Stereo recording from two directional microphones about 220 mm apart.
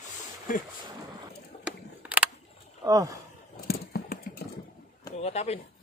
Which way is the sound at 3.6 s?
45° left (ahead or behind).